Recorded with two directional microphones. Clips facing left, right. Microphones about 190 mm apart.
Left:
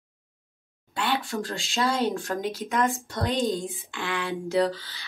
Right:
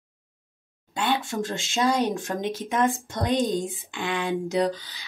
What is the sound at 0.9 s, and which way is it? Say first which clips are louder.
Speech: right 2 dB; 20° right (ahead or behind).